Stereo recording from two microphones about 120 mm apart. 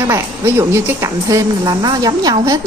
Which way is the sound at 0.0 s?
20° right (ahead or behind).